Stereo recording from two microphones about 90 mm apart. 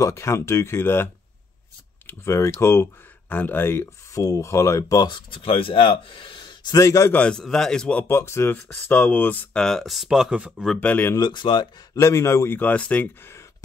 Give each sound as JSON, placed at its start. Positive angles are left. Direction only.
{"t": 0.0, "sound": "speech", "side_deg": 30}
{"t": 6.8, "sound": "speech", "side_deg": 35}
{"t": 7.1, "sound": "a man's voice", "side_deg": 15}
{"t": 8.1, "sound": "speech", "side_deg": 30}
{"t": 8.9, "sound": "speech", "side_deg": 15}
{"t": 9.5, "sound": "speech", "side_deg": 5}
{"t": 10.8, "sound": "a man's voice", "side_deg": 15}
{"t": 11.1, "sound": "speech", "side_deg": 55}
{"t": 11.9, "sound": "speech", "side_deg": 35}
{"t": 12.5, "sound": "a man's voice", "side_deg": 15}